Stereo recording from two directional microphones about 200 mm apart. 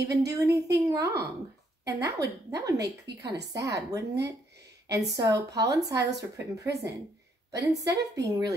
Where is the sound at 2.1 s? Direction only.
15° right (ahead or behind).